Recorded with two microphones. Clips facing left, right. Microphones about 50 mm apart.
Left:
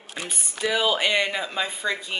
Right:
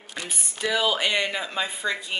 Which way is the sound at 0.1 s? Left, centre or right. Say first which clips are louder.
Left 1 dB; centre.